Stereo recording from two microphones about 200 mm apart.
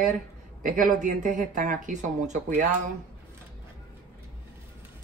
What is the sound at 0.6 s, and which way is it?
Speech, 40° right (ahead or behind).